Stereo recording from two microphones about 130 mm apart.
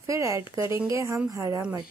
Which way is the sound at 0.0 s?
25° right (ahead or behind).